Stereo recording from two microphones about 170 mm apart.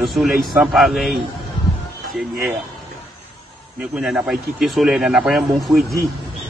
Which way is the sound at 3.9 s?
5° right (ahead or behind).